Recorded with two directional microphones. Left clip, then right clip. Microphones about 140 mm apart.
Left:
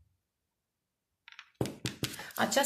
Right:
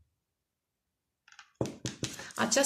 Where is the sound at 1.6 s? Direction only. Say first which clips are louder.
Even; 5° left (ahead or behind).